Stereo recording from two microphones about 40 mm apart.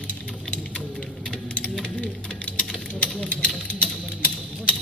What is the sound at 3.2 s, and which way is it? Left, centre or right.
Sewing machine, left.